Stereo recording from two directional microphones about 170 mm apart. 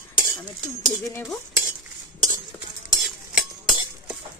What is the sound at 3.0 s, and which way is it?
Stir, centre (ahead or behind).